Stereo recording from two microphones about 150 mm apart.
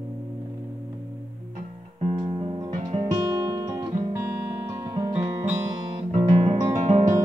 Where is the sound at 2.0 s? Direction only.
40° right (ahead or behind).